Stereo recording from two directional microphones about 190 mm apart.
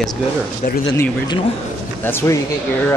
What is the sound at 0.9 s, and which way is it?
Speech, 15° left (ahead or behind).